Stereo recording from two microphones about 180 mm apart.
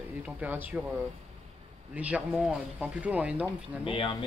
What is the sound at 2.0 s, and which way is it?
Speech, 10° right (ahead or behind).